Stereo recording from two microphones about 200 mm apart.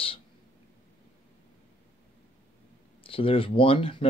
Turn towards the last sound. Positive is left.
turn(degrees=25)  # may be behind; listen again after turning